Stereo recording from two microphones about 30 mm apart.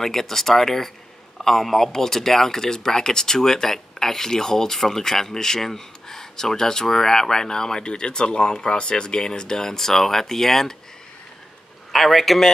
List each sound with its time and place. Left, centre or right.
0.0 s speech: centre
11.9 s a man's voice: centre